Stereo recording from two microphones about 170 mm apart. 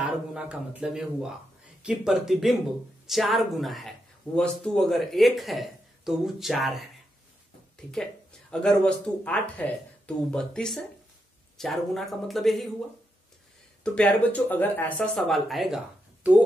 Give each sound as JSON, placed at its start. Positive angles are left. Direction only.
{"t": 0.0, "sound": "speech", "side_deg": -5}
{"t": 13.8, "sound": "speech", "side_deg": 10}